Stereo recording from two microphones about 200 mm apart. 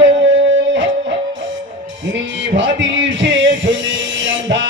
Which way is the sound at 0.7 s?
65° right (ahead or behind).